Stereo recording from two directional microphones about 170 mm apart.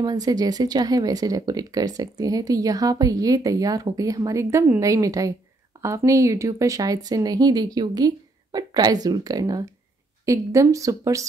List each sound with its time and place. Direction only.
0.0 s speech: 25° right (ahead or behind)